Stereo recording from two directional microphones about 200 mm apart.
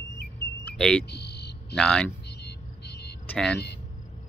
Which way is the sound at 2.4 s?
55° left (ahead or behind).